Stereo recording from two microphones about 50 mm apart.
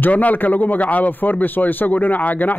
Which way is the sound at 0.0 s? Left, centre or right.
Left.